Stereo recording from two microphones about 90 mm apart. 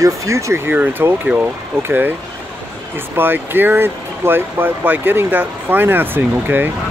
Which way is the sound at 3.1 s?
25° right (ahead or behind).